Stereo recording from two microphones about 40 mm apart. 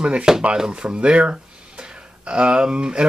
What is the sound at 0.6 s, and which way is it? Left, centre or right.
Speech, right.